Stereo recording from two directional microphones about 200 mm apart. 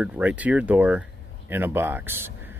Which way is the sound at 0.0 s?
5° right (ahead or behind).